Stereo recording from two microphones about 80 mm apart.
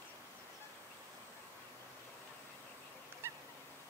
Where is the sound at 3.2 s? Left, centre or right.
Right.